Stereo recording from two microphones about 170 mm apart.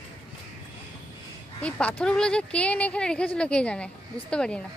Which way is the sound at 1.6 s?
5° left (ahead or behind).